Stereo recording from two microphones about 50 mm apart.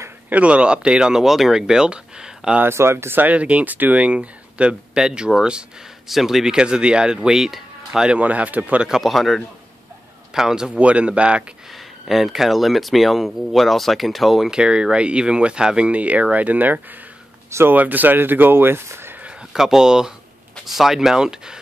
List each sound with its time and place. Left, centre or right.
0.3 s speech: right
2.6 s speech: right
3.2 s speech: right
6.0 s speech: centre
8.1 s speech: right
8.8 s speech: centre
10.3 s speech: centre
10.8 s speech: right
11.7 s speech: centre
14.6 s speech: centre; by 18.8 s right
18.9 s a sound: right
19.5 s speech: centre